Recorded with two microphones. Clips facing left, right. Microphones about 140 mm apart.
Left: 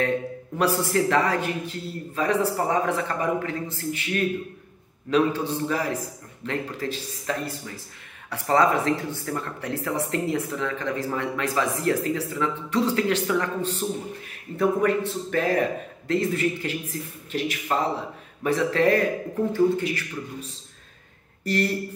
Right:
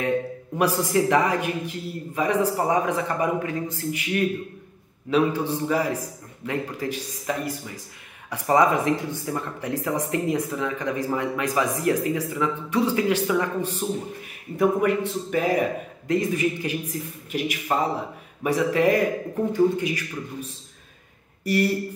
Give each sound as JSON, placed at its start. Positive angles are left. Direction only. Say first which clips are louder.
{"t": 0.6, "sound": "speech", "louder": "right 1 dB", "side_deg": -15}
{"t": 21.5, "sound": "speech", "louder": "right 2 dB", "side_deg": -10}